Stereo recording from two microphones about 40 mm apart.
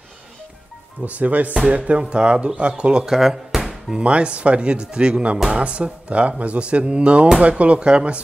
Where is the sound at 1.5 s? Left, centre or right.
Right.